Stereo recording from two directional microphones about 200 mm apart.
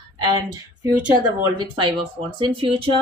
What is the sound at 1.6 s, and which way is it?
Speech, 25° right (ahead or behind).